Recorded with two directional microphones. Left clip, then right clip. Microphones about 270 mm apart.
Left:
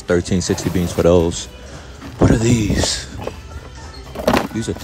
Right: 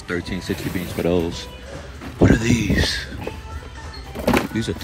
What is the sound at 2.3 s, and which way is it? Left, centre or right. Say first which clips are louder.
Speech: left 2 dB; centre.